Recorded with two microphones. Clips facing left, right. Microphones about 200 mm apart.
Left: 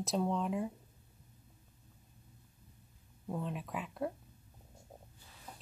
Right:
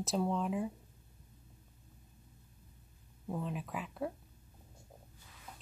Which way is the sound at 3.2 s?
Centre (ahead or behind).